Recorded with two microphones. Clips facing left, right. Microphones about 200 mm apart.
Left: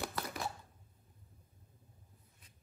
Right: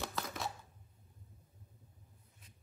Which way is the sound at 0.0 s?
15° left (ahead or behind).